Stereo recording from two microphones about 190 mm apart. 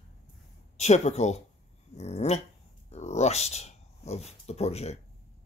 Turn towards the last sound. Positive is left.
turn(degrees=35)  # may be behind; listen again after turning